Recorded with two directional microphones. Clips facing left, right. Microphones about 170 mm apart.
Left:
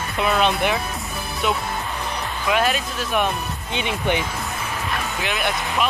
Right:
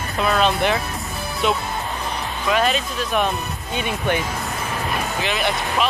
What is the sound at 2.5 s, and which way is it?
Speech, 5° left (ahead or behind).